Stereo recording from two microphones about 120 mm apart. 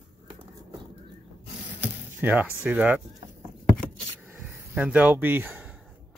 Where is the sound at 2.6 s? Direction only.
10° right (ahead or behind).